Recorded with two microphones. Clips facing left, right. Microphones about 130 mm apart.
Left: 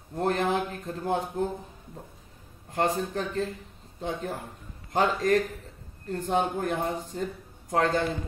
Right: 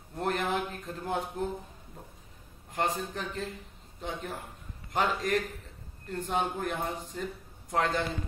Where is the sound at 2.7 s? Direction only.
40° left (ahead or behind).